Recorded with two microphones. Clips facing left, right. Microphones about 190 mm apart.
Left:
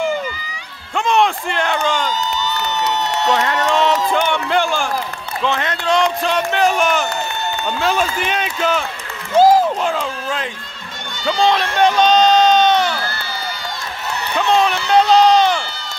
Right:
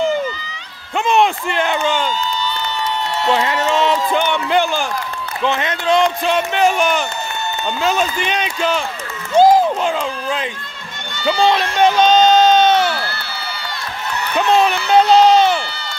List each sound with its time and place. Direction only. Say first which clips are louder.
0.9 s speech: right 1 dB; 5° right (ahead or behind)
3.3 s a man's voice: right 1 dB; 5° right (ahead or behind)
14.6 s speech: right 1 dB; 5° right (ahead or behind)